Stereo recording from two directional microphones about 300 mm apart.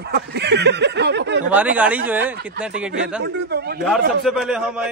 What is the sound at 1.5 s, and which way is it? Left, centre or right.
A man's voice, centre.